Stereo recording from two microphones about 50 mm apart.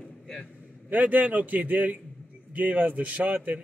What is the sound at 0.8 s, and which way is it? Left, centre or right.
Speech, right.